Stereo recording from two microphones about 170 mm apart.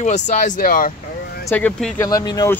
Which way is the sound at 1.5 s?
10° left (ahead or behind).